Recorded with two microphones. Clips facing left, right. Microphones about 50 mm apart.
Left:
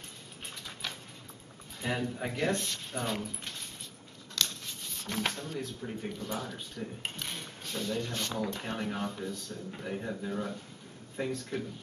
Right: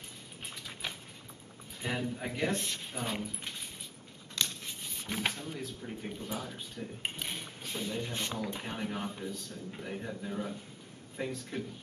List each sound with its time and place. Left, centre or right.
0.8 s a sound: centre
1.8 s speech: centre
2.3 s speech: centre
4.4 s a sound: centre
6.2 s speech: centre
9.8 s speech: centre